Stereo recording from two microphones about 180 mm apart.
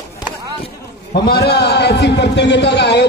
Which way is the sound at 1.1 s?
60° left (ahead or behind).